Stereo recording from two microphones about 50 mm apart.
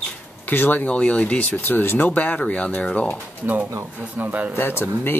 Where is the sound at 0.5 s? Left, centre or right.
Left.